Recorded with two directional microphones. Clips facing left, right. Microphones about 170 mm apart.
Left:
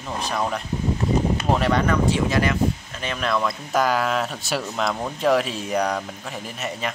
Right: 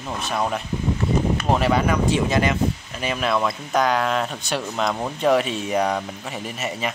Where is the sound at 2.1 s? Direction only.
20° right (ahead or behind).